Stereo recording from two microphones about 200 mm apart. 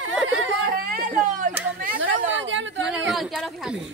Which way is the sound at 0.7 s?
45° right (ahead or behind).